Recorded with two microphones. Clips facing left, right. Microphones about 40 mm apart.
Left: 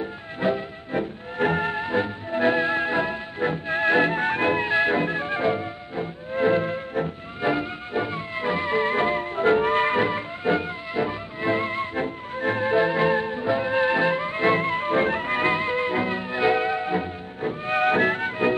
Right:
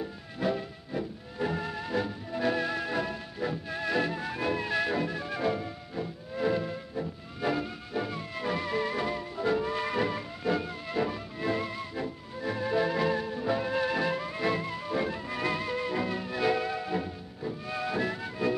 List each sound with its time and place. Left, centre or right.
0.0 s music: left
0.9 s music: left
17.4 s music: left